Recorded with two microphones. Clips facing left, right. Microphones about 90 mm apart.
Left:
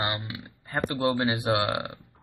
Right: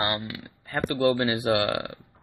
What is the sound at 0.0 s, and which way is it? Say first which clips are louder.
Speech: right 2 dB; 15° left (ahead or behind).